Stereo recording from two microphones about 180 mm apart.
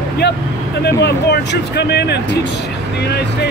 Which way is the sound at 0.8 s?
65° left (ahead or behind).